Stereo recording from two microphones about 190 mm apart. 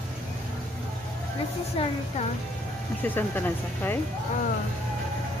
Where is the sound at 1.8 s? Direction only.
30° left (ahead or behind).